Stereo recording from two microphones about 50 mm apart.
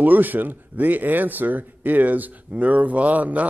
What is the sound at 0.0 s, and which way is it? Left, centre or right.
A man's voice, right.